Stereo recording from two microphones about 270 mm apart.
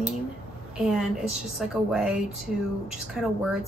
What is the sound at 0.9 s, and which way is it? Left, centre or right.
A woman's voice, centre.